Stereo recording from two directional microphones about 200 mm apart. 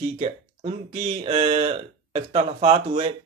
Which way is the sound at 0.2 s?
30° right (ahead or behind).